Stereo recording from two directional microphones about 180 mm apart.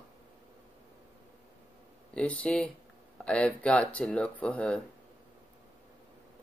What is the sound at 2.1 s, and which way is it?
Speech, 5° left (ahead or behind).